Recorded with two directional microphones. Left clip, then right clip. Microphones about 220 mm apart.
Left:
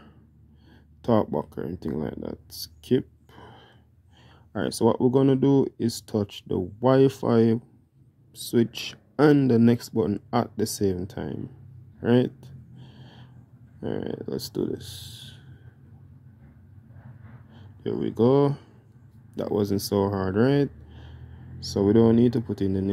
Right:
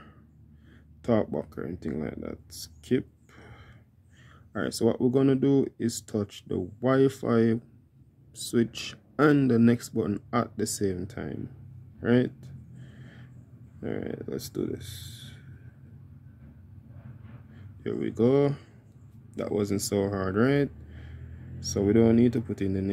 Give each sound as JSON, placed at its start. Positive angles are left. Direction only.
{"t": 1.0, "sound": "speech", "side_deg": 15}
{"t": 12.0, "sound": "a sound", "side_deg": 15}
{"t": 13.7, "sound": "speech", "side_deg": 15}
{"t": 17.8, "sound": "speech", "side_deg": 15}